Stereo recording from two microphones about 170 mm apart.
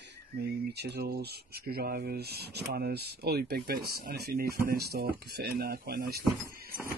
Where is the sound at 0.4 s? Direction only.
75° right (ahead or behind).